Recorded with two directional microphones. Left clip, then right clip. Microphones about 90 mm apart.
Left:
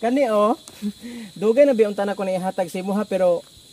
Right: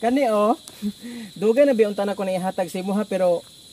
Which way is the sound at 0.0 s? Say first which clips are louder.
Left 1 dB; 15° left (ahead or behind).